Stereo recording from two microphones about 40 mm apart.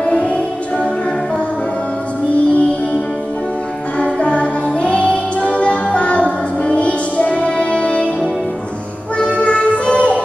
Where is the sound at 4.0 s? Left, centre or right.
Left.